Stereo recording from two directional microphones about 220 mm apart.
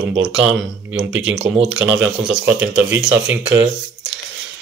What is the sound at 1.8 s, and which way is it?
Speech, 5° right (ahead or behind).